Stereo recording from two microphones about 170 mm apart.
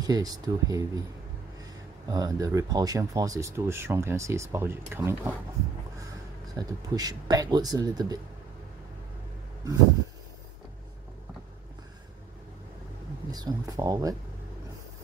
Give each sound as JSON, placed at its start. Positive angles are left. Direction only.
{"t": 0.0, "sound": "speech", "side_deg": -20}
{"t": 6.5, "sound": "speech", "side_deg": -20}
{"t": 13.3, "sound": "speech", "side_deg": -25}